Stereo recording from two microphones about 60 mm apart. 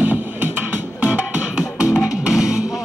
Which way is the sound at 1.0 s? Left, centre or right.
Centre.